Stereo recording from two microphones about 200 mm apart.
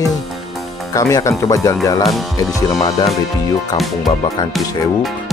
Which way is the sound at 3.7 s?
Centre (ahead or behind).